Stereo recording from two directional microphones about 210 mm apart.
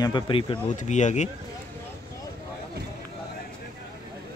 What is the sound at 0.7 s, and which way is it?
Speech, 35° left (ahead or behind).